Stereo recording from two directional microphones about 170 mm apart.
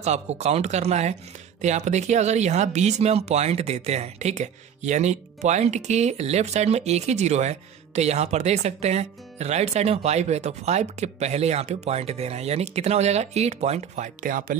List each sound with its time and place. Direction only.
0.0 s speech: 40° right (ahead or behind)